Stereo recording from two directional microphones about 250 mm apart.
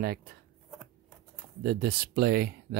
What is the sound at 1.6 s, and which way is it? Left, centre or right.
Speech, right.